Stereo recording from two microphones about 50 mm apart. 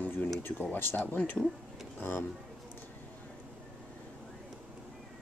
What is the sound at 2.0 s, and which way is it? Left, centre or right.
Speech, left.